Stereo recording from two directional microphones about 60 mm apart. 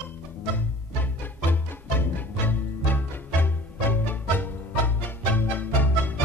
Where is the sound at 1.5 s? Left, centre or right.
Left.